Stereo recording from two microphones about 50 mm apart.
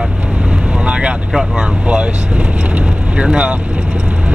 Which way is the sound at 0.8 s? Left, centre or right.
Right.